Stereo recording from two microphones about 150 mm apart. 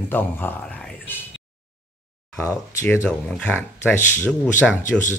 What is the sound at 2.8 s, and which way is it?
Speech, 15° left (ahead or behind).